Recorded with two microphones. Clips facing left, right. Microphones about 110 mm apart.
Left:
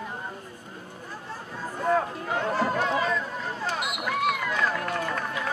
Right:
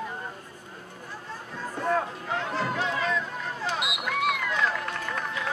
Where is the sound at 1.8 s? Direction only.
5° left (ahead or behind).